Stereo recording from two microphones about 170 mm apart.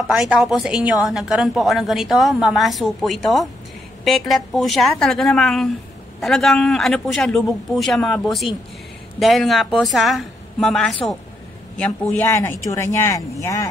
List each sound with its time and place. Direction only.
0.1 s a woman's voice: 5° right (ahead or behind); by 13.7 s 20° left (ahead or behind)